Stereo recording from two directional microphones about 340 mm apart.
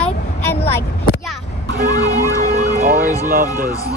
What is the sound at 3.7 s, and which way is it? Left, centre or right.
Speech, centre.